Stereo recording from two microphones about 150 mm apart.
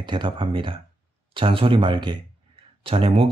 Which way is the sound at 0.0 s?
35° right (ahead or behind).